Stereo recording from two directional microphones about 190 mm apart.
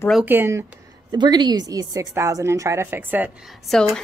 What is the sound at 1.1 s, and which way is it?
A woman's voice, 20° right (ahead or behind).